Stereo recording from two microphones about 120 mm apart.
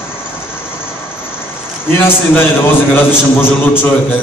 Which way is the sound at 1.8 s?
20° left (ahead or behind).